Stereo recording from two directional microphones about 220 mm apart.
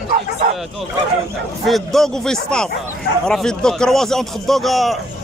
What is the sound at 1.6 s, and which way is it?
Speech, centre (ahead or behind).